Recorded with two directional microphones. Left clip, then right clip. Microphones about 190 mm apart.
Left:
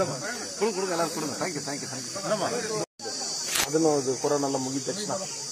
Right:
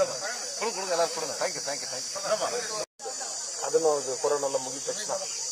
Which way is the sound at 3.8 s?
Centre (ahead or behind).